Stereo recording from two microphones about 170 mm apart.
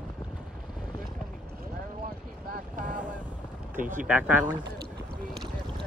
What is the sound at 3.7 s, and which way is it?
Speech, 50° right (ahead or behind).